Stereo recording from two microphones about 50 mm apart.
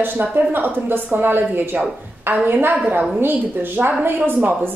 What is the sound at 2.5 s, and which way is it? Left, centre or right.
A woman's voice, right.